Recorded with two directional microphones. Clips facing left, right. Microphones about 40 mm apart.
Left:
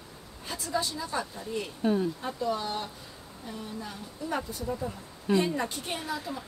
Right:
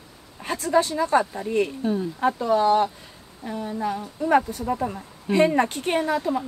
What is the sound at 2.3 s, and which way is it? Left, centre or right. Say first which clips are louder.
A woman's voice: right 11 dB; right.